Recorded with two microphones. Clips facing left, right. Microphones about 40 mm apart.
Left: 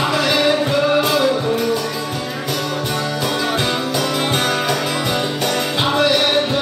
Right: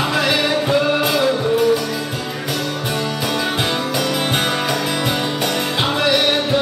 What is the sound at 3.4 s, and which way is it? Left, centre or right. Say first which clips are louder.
Music: left 1 dB; centre.